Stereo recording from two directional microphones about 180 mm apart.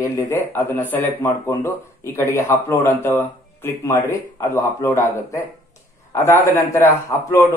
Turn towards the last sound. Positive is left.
turn(degrees=15)  # may be behind; listen again after turning